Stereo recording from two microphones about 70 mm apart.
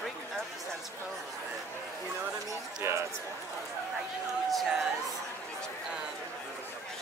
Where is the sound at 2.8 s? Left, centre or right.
Right.